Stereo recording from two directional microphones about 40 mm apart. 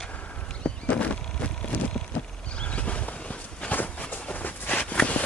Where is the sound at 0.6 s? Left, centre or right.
Left.